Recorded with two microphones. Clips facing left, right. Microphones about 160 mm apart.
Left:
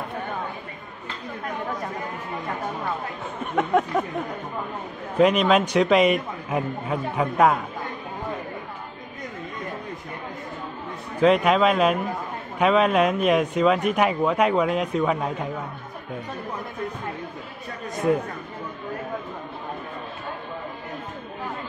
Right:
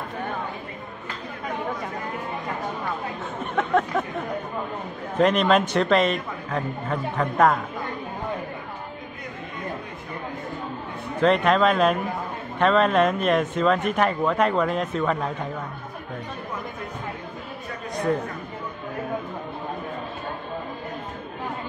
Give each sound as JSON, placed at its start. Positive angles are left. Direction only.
{"t": 3.5, "sound": "speech", "side_deg": 5}
{"t": 5.1, "sound": "speech", "side_deg": 5}
{"t": 11.1, "sound": "speech", "side_deg": 5}